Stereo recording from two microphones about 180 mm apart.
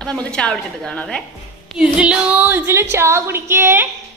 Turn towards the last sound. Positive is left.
turn(degrees=-15)  # may be behind; listen again after turning